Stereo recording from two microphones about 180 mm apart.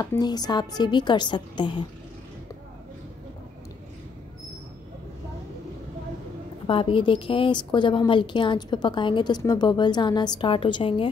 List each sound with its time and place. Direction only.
0.0 s a woman's voice: 20° left (ahead or behind)
6.7 s a woman's voice: 30° left (ahead or behind)